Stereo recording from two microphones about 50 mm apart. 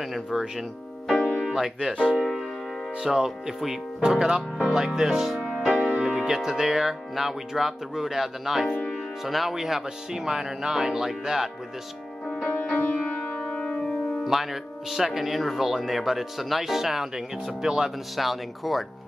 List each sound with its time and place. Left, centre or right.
0.0 s speech: centre
1.1 s music: left
1.4 s music: centre
1.8 s speech: centre
5.4 s music: centre
5.9 s speech: centre
12.7 s music: left
13.4 s music: left
14.2 s speech: centre